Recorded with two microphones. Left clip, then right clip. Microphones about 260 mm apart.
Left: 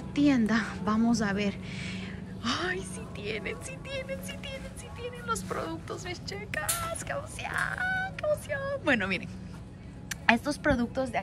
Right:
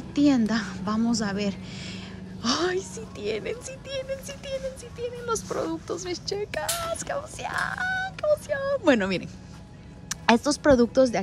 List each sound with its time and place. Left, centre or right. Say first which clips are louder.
0.1 s a woman's voice: right 3 dB; centre